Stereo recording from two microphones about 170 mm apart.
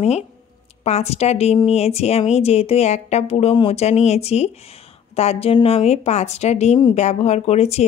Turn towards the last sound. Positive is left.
turn(degrees=40)  # may be behind; listen again after turning